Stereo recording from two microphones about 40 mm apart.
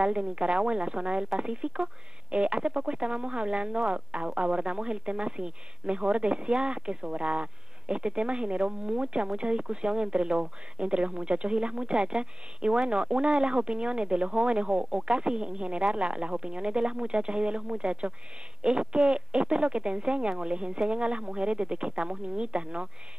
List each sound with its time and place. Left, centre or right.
0.0 s speech: right